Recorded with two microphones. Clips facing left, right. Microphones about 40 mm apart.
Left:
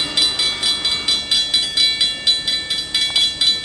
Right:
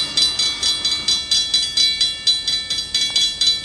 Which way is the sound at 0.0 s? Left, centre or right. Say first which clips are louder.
Left 1 dB; centre.